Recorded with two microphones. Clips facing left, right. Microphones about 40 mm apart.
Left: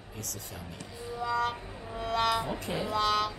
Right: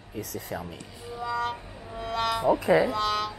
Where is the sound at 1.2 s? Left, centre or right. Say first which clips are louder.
Right 1 dB; centre.